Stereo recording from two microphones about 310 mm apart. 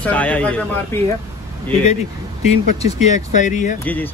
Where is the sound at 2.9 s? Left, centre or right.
Left.